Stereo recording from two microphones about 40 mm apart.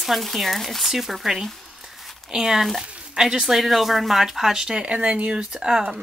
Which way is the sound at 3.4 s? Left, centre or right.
Centre.